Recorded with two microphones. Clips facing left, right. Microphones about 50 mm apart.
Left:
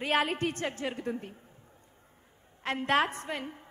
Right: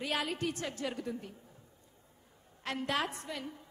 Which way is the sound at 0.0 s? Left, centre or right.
Left.